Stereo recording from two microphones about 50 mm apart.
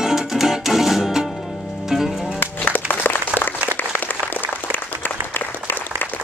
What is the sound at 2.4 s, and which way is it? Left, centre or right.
Music, left.